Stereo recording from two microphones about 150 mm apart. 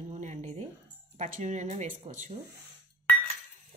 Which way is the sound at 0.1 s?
55° right (ahead or behind).